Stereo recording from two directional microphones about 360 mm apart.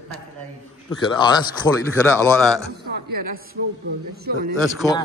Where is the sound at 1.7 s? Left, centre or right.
Centre.